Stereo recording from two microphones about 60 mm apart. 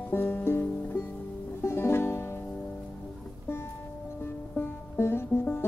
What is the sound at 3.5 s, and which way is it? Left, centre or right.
Music, left.